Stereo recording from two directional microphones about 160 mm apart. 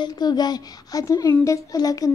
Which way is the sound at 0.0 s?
25° left (ahead or behind).